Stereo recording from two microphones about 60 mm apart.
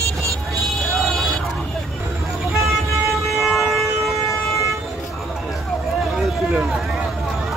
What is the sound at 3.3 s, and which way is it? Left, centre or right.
Siren, centre.